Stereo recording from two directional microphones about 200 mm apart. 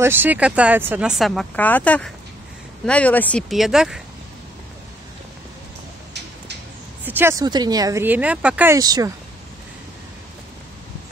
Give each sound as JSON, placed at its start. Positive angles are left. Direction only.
{"t": 0.0, "sound": "speech", "side_deg": -10}
{"t": 7.1, "sound": "speech", "side_deg": -10}
{"t": 8.7, "sound": "speech", "side_deg": -20}